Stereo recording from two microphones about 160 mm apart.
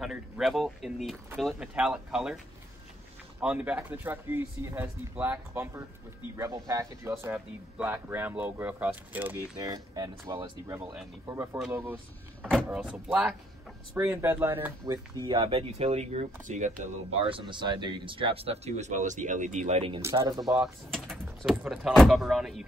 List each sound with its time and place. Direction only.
0.0 s speech: centre (ahead or behind)
9.6 s speech: 25° right (ahead or behind)
15.2 s speech: 30° right (ahead or behind); by 17.2 s 50° right (ahead or behind)
17.3 s speech: 30° right (ahead or behind); by 19.8 s 50° right (ahead or behind)
20.2 s speech: 25° right (ahead or behind)
20.5 s speech: centre (ahead or behind)